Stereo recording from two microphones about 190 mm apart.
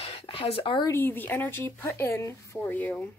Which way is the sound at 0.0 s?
30° left (ahead or behind).